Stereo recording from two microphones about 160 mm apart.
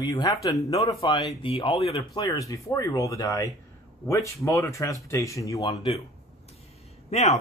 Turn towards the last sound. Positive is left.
turn(degrees=45)  # may be behind; listen again after turning